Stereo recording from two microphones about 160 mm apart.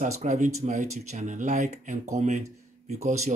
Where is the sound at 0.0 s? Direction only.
45° right (ahead or behind).